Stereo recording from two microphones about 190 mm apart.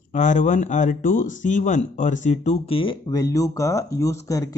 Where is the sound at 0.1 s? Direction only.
40° left (ahead or behind).